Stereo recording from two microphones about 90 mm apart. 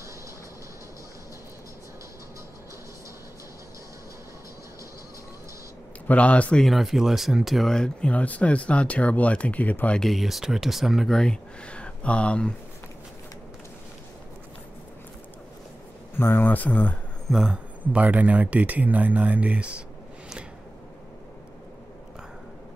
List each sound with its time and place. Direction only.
6.0 s speech: 15° left (ahead or behind)
6.6 s speech: centre (ahead or behind); by 10.0 s 15° left (ahead or behind)
10.0 s speech: centre (ahead or behind)
16.2 s speech: 25° left (ahead or behind)
17.3 s speech: 5° right (ahead or behind)
17.9 s speech: 20° right (ahead or behind)